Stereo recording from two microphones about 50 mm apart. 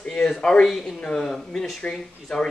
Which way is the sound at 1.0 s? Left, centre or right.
Centre.